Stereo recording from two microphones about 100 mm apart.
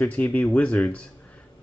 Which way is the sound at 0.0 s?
15° left (ahead or behind).